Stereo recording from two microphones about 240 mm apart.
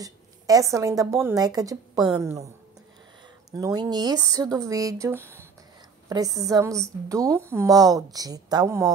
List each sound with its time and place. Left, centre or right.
0.0 s a woman's voice: centre
3.5 s a woman's voice: centre